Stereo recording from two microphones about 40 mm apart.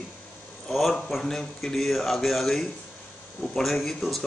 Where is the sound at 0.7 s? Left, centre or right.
Centre.